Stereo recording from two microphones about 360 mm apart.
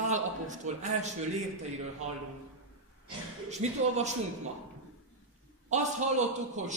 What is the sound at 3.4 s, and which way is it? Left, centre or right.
Speech, centre.